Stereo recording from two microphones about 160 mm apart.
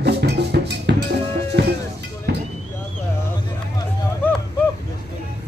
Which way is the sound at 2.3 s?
90° right.